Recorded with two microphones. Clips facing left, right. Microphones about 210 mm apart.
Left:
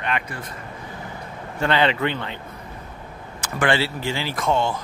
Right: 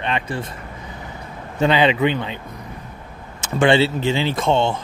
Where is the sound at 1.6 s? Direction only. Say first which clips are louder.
Right 4 dB; 15° right (ahead or behind).